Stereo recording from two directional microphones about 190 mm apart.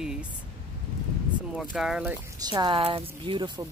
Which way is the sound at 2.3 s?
20° right (ahead or behind).